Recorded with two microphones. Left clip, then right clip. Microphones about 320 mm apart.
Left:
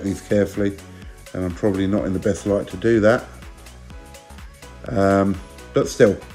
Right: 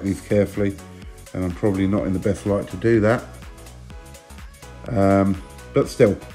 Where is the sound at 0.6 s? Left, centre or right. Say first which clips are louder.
Left 1 dB; right.